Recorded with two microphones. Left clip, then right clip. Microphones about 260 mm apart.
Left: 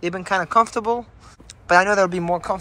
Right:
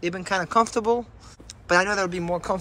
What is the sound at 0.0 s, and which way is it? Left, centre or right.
Speech, centre.